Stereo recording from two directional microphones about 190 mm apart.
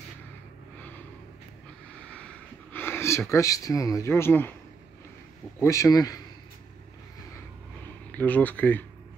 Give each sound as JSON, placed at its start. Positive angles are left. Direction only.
{"t": 2.7, "sound": "speech", "side_deg": 10}
{"t": 5.6, "sound": "speech", "side_deg": 15}
{"t": 8.1, "sound": "speech", "side_deg": 5}